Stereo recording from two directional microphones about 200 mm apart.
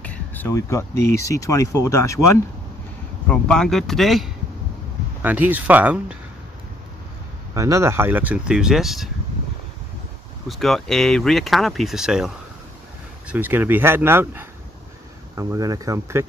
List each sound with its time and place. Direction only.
0.0 s speech: 10° left (ahead or behind)
3.3 s speech: 5° left (ahead or behind)
7.5 s speech: 15° right (ahead or behind)
10.5 s speech: centre (ahead or behind)
13.3 s speech: 10° right (ahead or behind)